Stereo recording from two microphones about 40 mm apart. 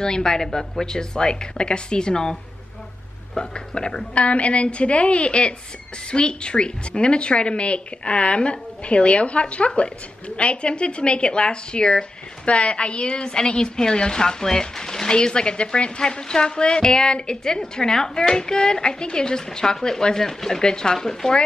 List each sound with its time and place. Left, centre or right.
0.0 s a woman's voice: centre
3.3 s speech: left
4.1 s speech: left; by 21.4 s centre